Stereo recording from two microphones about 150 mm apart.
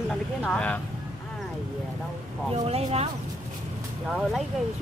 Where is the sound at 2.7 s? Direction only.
45° right (ahead or behind).